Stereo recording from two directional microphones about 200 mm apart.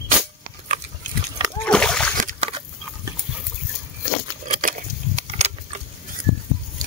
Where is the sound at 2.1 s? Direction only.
40° right (ahead or behind).